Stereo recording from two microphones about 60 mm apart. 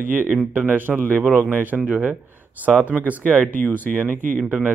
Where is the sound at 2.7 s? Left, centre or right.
Centre.